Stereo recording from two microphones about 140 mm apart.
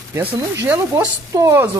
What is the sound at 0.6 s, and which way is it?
Speech, 20° right (ahead or behind).